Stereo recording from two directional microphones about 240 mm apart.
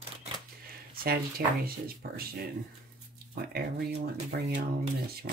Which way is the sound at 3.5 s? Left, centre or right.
Right.